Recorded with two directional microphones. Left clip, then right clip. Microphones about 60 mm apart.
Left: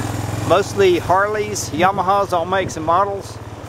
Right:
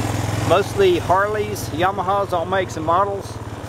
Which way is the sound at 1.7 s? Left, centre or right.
Left.